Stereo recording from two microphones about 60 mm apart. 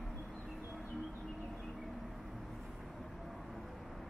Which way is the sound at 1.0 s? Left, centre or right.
Centre.